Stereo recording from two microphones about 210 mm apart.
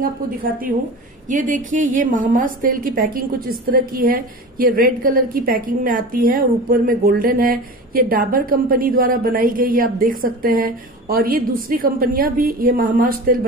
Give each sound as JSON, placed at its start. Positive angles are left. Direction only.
{"t": 0.0, "sound": "a woman's voice", "side_deg": -40}